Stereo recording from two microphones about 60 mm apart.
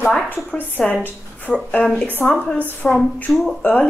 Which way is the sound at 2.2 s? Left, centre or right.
Left.